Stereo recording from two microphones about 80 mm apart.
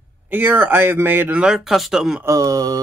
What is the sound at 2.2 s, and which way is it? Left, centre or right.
Speech, right.